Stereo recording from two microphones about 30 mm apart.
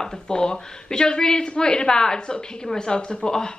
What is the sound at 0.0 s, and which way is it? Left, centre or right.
Speech, left.